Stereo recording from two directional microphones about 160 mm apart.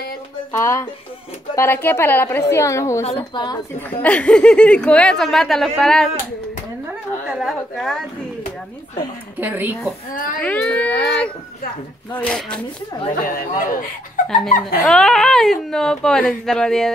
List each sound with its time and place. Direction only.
0.5 s a woman's voice: 15° left (ahead or behind)
3.0 s a woman's voice: 35° left (ahead or behind)
4.0 s speech: 5° left (ahead or behind)
6.9 s a sound: 5° right (ahead or behind)
9.4 s speech: 10° right (ahead or behind)
10.1 s speech: 60° left (ahead or behind)
10.4 s a woman's voice: 10° left (ahead or behind)
12.2 s speech: 5° left (ahead or behind)
13.1 s speech: 60° left (ahead or behind)
14.2 s speech: centre (ahead or behind)